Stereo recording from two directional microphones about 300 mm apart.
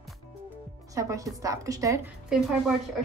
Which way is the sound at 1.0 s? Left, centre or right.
Centre.